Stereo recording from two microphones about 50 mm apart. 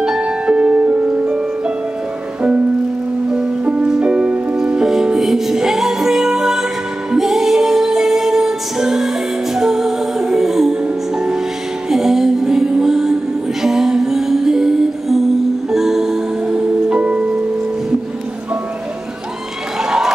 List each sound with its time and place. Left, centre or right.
0.2 s music: centre
3.3 s music: centre
16.4 s music: centre
19.8 s a sound: centre